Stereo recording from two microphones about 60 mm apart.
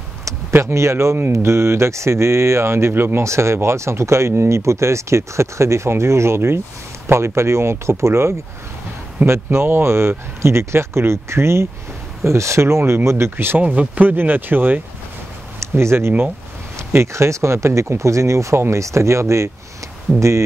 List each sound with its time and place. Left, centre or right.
0.5 s speech: right
3.3 s speech: right
13.6 s speech: right
15.6 s speech: right